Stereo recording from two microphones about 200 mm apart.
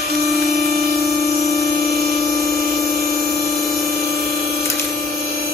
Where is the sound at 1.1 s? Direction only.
50° right (ahead or behind).